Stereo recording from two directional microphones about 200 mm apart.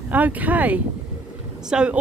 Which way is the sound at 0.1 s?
10° right (ahead or behind).